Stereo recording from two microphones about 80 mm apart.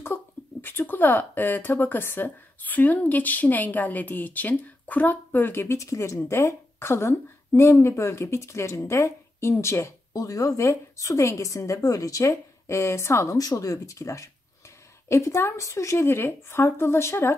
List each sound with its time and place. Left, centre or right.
0.0 s speech: left
10.1 s a woman's voice: left
13.4 s a woman's voice: left